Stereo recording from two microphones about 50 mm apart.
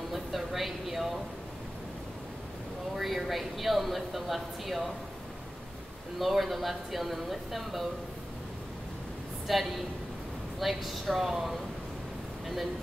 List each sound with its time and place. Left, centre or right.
0.1 s a sound: centre
3.0 s speech: centre
6.1 s speech: centre
9.5 s speech: centre